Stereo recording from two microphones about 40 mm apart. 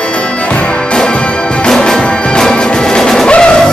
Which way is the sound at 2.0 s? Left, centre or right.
Left.